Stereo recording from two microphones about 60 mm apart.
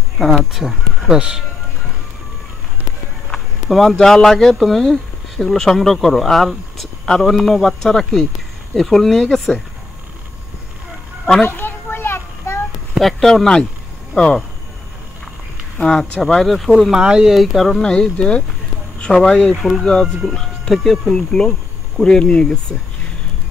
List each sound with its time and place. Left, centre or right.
0.2 s speech: centre
3.6 s speech: centre
11.4 s children playing: left
13.0 s speech: centre
15.8 s speech: centre
17.0 s speech: centre
17.3 s speech: centre
17.7 s speech: centre